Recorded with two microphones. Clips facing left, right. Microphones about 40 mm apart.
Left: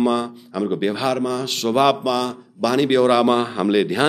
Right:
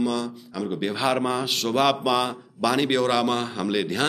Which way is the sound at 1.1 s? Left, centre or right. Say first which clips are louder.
Right 1 dB; centre.